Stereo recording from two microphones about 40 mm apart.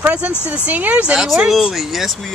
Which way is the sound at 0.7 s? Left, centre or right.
Right.